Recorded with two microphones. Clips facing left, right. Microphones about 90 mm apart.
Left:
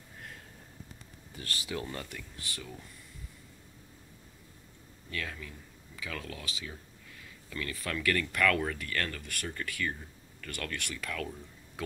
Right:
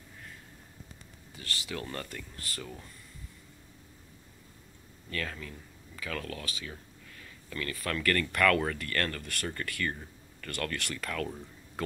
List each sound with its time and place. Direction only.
1.3 s speech: 35° left (ahead or behind)
1.7 s speech: 20° left (ahead or behind)
5.1 s speech: 5° left (ahead or behind)
10.8 s speech: 50° right (ahead or behind)